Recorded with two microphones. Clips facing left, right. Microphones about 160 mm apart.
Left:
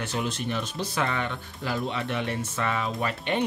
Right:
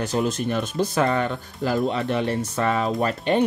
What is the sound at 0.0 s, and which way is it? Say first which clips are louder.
Speech: right 7 dB; 40° right (ahead or behind).